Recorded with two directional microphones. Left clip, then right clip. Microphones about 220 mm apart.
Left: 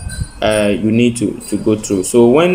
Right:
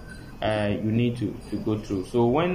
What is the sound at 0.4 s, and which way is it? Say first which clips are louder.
Speech: left 12 dB; 50° left (ahead or behind).